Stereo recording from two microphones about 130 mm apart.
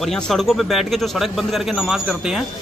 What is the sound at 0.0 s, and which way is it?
Speech, centre (ahead or behind).